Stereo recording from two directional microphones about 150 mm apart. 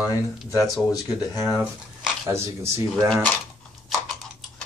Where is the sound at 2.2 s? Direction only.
20° right (ahead or behind).